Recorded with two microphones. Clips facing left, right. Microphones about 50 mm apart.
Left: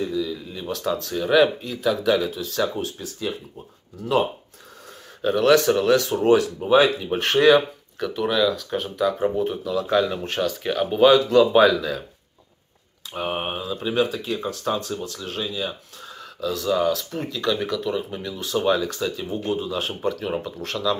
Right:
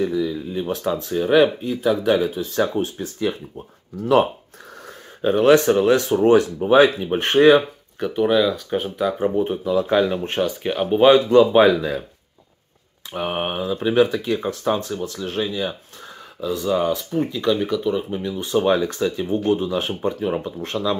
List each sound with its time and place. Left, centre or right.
0.0 s speech: right
1.0 s speech: centre; by 4.3 s right
5.2 s speech: right
7.2 s speech: right
9.5 s speech: right
10.2 s speech: right
13.1 s speech: right
14.4 s speech: right
16.3 s speech: right
18.2 s speech: right
20.1 s speech: right